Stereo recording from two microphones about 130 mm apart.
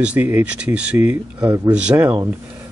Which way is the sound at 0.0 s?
10° right (ahead or behind).